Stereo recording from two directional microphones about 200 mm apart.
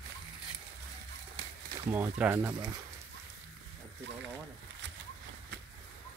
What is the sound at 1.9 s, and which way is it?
Speech, 10° right (ahead or behind).